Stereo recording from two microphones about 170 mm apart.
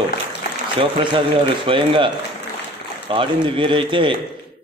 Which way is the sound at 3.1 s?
30° right (ahead or behind).